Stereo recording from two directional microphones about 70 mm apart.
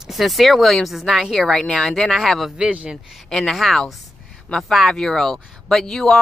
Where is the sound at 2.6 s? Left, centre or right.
Centre.